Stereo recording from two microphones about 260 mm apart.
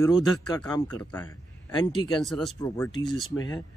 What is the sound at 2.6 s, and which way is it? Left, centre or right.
Speech, centre.